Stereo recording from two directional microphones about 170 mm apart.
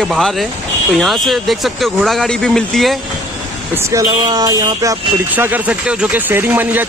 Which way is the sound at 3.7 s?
15° right (ahead or behind).